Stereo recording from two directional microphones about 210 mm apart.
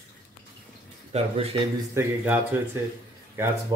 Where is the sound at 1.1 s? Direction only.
25° right (ahead or behind).